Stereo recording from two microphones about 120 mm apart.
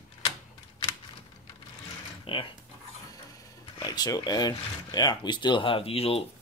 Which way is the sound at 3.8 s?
35° left (ahead or behind).